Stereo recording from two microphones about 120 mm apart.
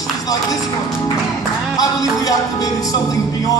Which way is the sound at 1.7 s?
30° left (ahead or behind).